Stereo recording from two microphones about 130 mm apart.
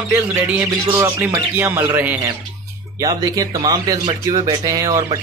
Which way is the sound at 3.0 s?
30° right (ahead or behind).